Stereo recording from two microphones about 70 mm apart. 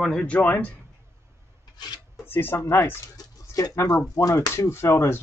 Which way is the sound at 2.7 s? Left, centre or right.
Left.